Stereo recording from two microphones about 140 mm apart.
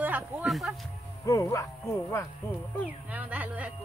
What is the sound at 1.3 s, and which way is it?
Speech, 20° left (ahead or behind).